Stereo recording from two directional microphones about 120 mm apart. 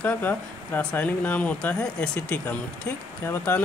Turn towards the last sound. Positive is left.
turn(degrees=20)  # may be behind; listen again after turning